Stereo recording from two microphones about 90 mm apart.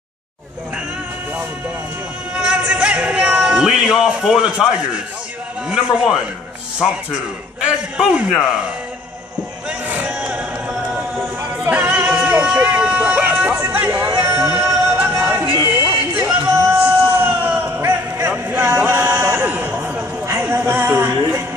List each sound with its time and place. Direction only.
2.3 s speech: 10° right (ahead or behind)
7.6 s a man's voice: 10° right (ahead or behind)
9.7 s crowd: 15° right (ahead or behind)
10.2 s music: 5° right (ahead or behind)
11.6 s a sound: 15° right (ahead or behind)
13.6 s chatter: 25° right (ahead or behind)
14.1 s music: 20° right (ahead or behind)
20.2 s a sound: 30° right (ahead or behind)